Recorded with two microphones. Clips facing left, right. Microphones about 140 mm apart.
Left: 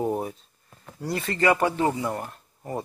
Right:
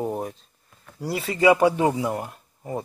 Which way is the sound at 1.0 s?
5° right (ahead or behind).